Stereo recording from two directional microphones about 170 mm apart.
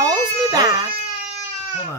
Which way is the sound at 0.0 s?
20° right (ahead or behind).